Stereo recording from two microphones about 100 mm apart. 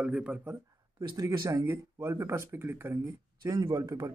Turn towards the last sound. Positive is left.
turn(degrees=-35)  # may be behind; listen again after turning